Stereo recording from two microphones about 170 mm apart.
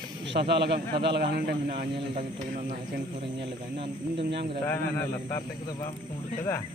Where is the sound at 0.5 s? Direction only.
85° right.